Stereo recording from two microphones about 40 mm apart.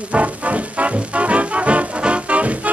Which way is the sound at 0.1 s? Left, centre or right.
Right.